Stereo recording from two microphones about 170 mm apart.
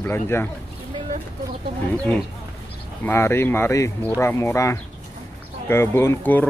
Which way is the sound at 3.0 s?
15° left (ahead or behind).